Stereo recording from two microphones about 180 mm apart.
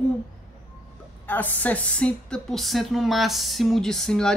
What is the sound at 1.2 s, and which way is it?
A woman's voice, 10° left (ahead or behind).